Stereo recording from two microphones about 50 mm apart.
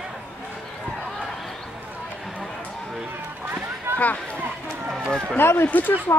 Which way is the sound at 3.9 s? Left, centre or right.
Right.